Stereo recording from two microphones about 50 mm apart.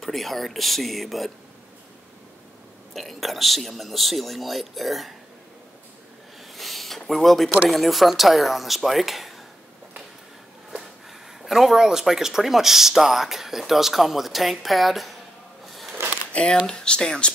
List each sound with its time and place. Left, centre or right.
0.0 s speech: centre
2.9 s speech: centre
6.5 s a sound: centre
7.1 s speech: centre
11.4 s speech: centre
15.6 s a sound: centre
16.3 s speech: centre